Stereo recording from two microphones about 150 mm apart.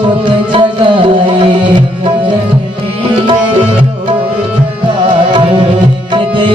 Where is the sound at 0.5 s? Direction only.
35° right (ahead or behind).